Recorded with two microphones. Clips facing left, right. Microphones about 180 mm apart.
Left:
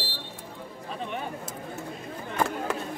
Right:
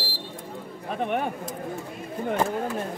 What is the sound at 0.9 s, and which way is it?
Speech, 60° right (ahead or behind).